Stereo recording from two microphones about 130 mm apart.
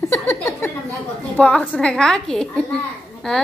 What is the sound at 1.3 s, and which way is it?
A woman's voice, 10° left (ahead or behind).